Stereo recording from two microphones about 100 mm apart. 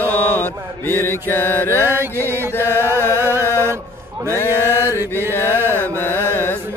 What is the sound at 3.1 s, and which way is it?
Mantra, 25° right (ahead or behind).